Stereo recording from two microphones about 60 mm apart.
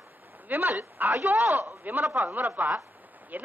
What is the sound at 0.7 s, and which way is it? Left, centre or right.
Speech, right.